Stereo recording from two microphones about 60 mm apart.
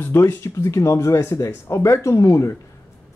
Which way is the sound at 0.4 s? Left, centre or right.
Left.